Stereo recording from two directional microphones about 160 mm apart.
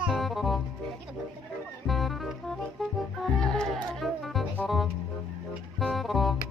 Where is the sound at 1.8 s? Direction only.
Centre (ahead or behind).